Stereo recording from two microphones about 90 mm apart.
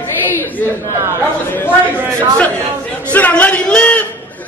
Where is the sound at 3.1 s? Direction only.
15° left (ahead or behind).